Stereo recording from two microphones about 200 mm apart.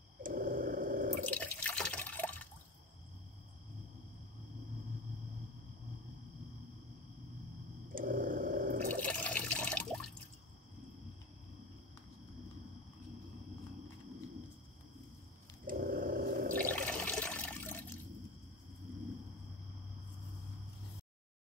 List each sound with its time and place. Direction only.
0.2 s a sound: 45° right (ahead or behind)
1.3 s water: 5° left (ahead or behind)
7.9 s a sound: 45° right (ahead or behind)
8.9 s water: 5° left (ahead or behind)
15.6 s drip: 45° right (ahead or behind)
16.5 s toilet flush: 5° left (ahead or behind)